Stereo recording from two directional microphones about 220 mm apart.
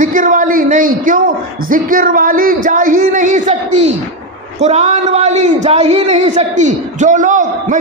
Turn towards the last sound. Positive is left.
turn(degrees=-35)  # may be behind; listen again after turning